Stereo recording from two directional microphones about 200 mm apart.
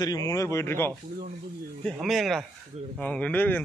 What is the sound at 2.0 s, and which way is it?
A man's voice, centre (ahead or behind).